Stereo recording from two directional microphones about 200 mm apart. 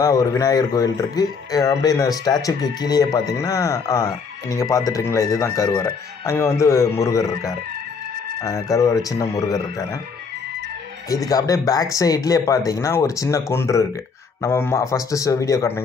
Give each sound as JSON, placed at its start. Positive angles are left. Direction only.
{"t": 0.0, "sound": "speech", "side_deg": 15}
{"t": 11.1, "sound": "speech", "side_deg": 15}